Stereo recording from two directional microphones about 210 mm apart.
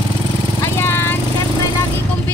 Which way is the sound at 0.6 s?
10° left (ahead or behind).